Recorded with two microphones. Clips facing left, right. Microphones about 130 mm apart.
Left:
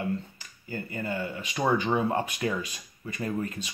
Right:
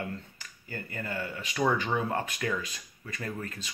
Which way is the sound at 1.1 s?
25° left (ahead or behind).